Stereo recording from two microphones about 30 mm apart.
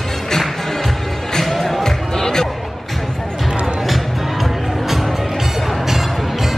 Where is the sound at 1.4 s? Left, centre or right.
Centre.